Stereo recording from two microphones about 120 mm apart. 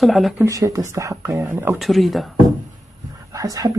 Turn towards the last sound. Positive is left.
turn(degrees=-30)  # may be behind; listen again after turning